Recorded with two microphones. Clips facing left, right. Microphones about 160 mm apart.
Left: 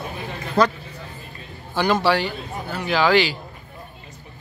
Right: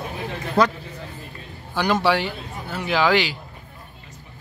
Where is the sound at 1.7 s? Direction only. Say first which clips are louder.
Left 1 dB; 10° right (ahead or behind).